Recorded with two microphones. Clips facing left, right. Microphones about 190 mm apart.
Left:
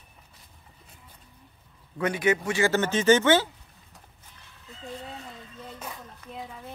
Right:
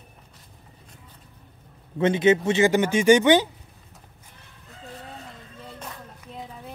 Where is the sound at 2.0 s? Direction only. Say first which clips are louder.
Right 6 dB; 25° right (ahead or behind).